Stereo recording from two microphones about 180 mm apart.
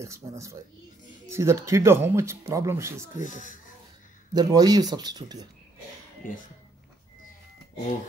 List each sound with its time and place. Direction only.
0.0 s speech: 15° right (ahead or behind)
3.2 s speech: 45° left (ahead or behind)
4.3 s speech: 20° right (ahead or behind)